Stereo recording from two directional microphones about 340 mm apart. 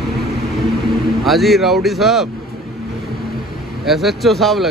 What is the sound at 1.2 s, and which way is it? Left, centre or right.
Speech, centre.